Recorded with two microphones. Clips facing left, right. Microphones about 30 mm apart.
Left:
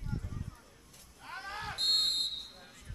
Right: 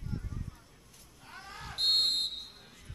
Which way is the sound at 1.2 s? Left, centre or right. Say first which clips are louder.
Left 5 dB; left.